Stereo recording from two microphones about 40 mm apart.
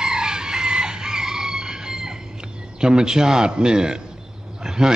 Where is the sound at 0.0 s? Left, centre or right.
Centre.